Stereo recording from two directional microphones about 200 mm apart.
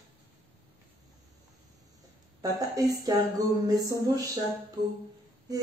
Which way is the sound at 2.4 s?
20° right (ahead or behind).